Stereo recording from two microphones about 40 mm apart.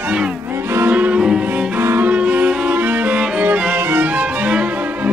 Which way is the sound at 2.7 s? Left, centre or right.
Right.